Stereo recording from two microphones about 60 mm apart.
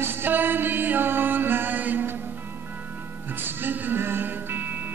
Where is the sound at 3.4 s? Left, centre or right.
Right.